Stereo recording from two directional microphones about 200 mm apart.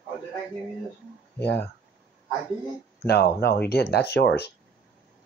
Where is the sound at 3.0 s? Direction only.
55° left (ahead or behind).